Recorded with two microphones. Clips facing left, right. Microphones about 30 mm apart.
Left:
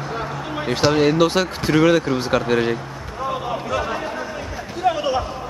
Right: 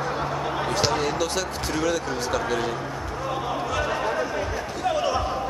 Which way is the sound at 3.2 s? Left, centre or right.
Centre.